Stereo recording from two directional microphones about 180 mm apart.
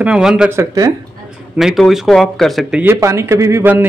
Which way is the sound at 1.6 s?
Centre (ahead or behind).